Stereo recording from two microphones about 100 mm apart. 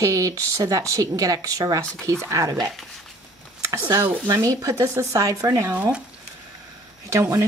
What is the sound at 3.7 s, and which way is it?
Speech, 30° right (ahead or behind).